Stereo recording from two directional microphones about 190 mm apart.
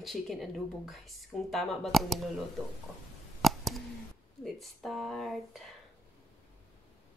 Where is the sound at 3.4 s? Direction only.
Centre (ahead or behind).